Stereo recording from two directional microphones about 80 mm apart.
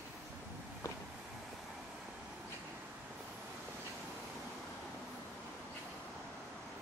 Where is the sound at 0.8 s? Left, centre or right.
Left.